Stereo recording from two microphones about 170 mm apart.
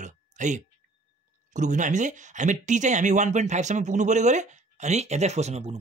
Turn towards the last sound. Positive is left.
turn(degrees=-40)  # may be behind; listen again after turning